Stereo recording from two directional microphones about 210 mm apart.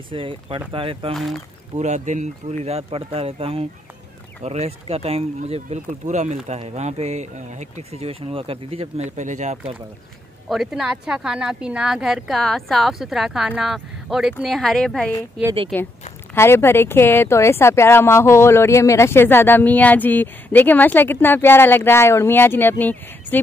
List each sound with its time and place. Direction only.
0.1 s speech: 25° right (ahead or behind)
1.1 s speech: centre (ahead or behind)
1.8 s speech: 35° right (ahead or behind)
10.5 s speech: centre (ahead or behind)